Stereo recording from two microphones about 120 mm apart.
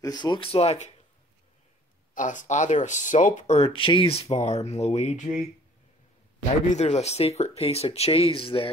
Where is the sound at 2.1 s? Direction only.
90° left.